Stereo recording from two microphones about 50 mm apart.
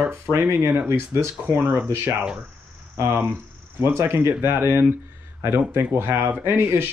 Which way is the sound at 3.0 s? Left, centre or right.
Right.